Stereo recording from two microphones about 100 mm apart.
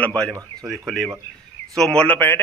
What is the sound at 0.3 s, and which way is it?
Speech, 35° right (ahead or behind).